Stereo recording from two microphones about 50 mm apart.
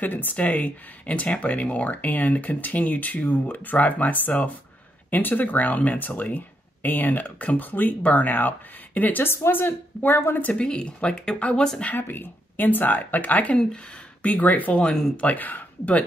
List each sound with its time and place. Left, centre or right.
0.0 s speech: left
0.4 s speech: left
9.2 s speech: left
10.4 s speech: left
12.0 s speech: left
14.8 s speech: centre
15.2 s speech: left